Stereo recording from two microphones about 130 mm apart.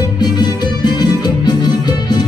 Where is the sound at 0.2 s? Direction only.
30° left (ahead or behind).